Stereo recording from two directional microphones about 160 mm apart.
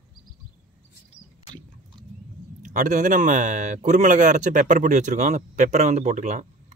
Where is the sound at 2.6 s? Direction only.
55° right (ahead or behind).